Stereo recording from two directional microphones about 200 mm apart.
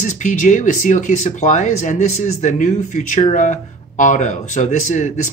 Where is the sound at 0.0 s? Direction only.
40° left (ahead or behind).